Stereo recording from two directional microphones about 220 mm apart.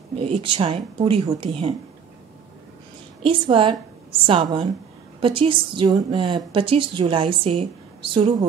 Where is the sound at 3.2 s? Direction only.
25° right (ahead or behind).